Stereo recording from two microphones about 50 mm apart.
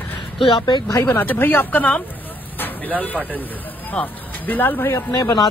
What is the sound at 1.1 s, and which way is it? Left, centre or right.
Speech, left.